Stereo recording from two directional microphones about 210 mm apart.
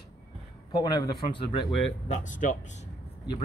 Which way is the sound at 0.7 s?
20° left (ahead or behind).